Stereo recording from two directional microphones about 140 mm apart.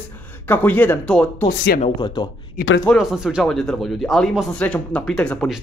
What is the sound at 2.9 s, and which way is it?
Speech, 5° right (ahead or behind).